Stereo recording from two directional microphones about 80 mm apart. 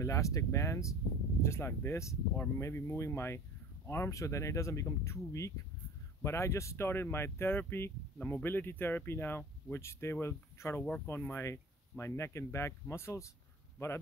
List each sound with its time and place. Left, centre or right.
0.0 s speech: left